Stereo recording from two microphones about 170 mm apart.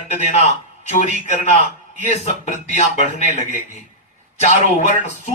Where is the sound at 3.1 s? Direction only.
40° left (ahead or behind).